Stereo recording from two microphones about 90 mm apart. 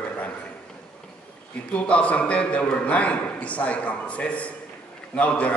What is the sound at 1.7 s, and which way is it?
A man's voice, 15° left (ahead or behind).